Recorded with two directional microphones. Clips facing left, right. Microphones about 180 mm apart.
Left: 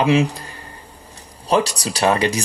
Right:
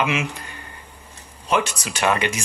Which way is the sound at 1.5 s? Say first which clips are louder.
Left 4 dB; 35° left (ahead or behind).